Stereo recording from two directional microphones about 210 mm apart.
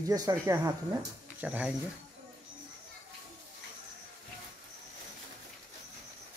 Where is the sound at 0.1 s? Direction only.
15° right (ahead or behind).